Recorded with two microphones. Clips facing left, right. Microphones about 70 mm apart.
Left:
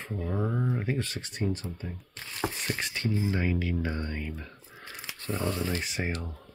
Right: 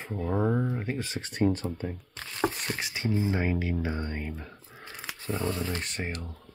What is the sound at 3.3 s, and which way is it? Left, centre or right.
Speech, right.